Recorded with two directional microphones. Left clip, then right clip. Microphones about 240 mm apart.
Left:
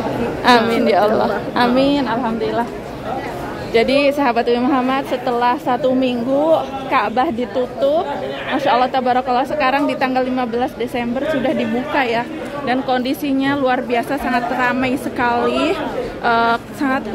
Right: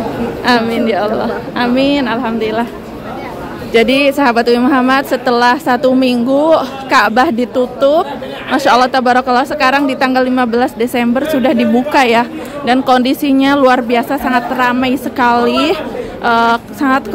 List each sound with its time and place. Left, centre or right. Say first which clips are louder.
0.5 s a woman's voice: even; centre
3.7 s a woman's voice: right 4 dB; centre